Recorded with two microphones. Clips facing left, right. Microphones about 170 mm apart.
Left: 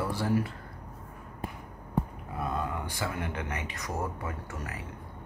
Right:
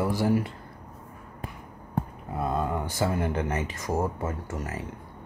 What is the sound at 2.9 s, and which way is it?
Speech, 35° right (ahead or behind).